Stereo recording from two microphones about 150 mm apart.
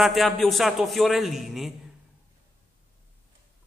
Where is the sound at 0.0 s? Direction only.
Centre (ahead or behind).